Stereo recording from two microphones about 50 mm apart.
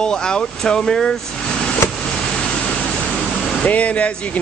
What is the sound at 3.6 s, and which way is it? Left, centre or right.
Speech, left.